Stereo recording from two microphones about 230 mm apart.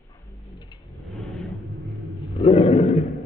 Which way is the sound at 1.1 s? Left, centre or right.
Centre.